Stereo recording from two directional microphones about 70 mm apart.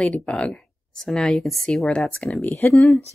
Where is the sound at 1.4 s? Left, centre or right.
Centre.